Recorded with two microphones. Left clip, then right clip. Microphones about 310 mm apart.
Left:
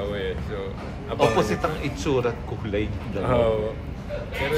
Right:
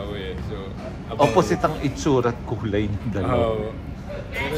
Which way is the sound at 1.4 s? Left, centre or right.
Right.